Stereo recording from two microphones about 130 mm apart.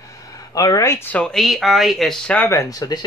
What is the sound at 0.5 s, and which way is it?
Speech, 25° left (ahead or behind).